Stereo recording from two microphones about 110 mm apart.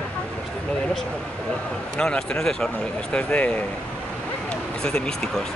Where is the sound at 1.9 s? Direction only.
5° left (ahead or behind).